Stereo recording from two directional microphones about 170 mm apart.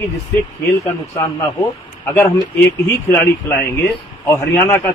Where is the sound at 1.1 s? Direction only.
15° left (ahead or behind).